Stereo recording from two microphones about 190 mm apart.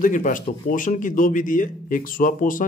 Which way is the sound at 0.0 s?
45° left (ahead or behind).